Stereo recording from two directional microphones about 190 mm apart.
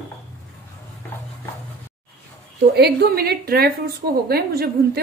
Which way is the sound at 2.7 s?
60° right (ahead or behind).